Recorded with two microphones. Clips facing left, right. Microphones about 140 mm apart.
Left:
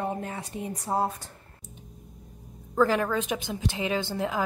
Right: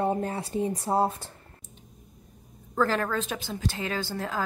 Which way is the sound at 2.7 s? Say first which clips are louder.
Left 2 dB; 10° left (ahead or behind).